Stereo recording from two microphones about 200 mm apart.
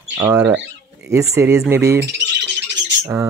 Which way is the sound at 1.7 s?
15° right (ahead or behind).